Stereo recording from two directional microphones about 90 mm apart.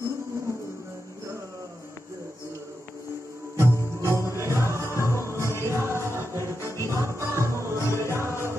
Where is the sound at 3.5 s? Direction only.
30° right (ahead or behind).